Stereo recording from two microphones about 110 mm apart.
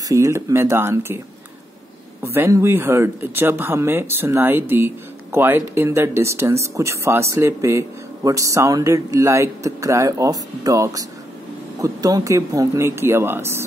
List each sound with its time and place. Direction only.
0.1 s speech: 30° right (ahead or behind)
2.2 s speech: 25° right (ahead or behind)